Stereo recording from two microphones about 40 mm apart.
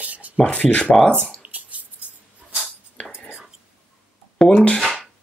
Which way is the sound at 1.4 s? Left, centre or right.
Right.